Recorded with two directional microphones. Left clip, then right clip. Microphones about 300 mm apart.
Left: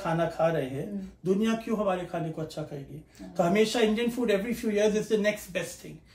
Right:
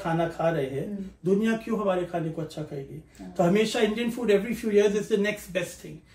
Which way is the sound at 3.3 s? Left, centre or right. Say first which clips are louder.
Right 1 dB; centre.